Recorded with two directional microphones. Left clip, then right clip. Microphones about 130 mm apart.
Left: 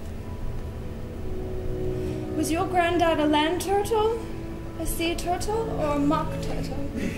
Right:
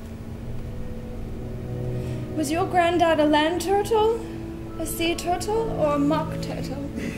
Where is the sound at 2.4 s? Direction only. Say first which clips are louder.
Right 3 dB; 15° right (ahead or behind).